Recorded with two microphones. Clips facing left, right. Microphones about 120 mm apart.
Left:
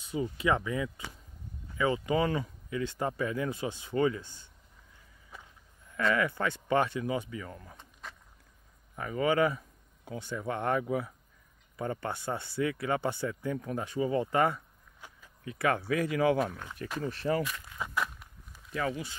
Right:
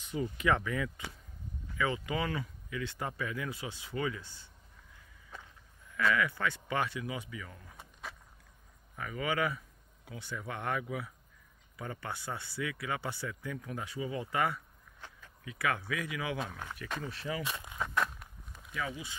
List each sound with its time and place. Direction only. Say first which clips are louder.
0.1 s speech: left 2 dB; 20° left (ahead or behind)
5.9 s speech: left 2 dB; 30° left (ahead or behind)
7.7 s keys jangling: right 1 dB; 5° right (ahead or behind)
8.9 s speech: left 6 dB; 35° left (ahead or behind)
15.0 s a sound: even; 10° left (ahead or behind)
15.4 s speech: left 5 dB; 40° left (ahead or behind)
17.4 s speech: left 5 dB; 25° right (ahead or behind)
17.7 s a sound: right 1 dB; 5° left (ahead or behind)
18.7 s speech: left 6 dB; 55° left (ahead or behind)